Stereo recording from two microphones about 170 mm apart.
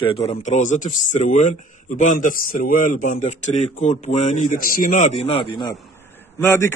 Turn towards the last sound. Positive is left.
turn(degrees=15)  # may be behind; listen again after turning